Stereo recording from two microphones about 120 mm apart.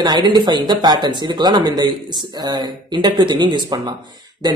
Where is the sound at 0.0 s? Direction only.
40° right (ahead or behind).